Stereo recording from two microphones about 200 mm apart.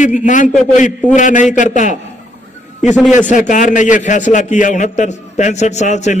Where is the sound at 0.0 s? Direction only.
40° left (ahead or behind).